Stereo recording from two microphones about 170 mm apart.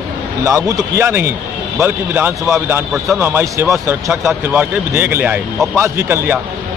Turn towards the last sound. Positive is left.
turn(degrees=-15)  # may be behind; listen again after turning